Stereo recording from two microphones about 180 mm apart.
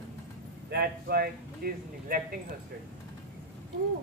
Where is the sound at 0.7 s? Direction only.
60° right (ahead or behind).